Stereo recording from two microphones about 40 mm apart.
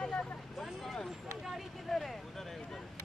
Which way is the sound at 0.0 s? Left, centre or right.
Left.